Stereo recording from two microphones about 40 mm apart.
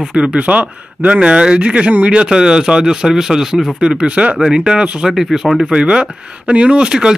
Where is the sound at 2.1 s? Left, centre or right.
Centre.